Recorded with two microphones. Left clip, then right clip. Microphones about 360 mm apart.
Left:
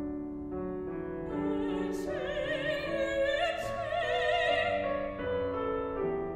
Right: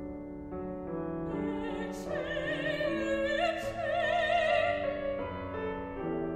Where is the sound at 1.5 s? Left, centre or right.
Right.